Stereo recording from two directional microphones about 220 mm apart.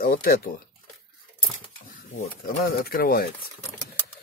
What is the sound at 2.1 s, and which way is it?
A man's voice, 40° left (ahead or behind).